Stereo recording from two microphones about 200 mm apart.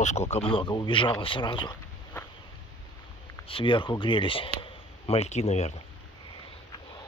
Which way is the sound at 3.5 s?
25° left (ahead or behind).